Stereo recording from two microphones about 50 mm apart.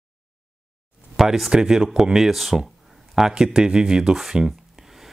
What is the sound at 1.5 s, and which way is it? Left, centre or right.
Speech, centre.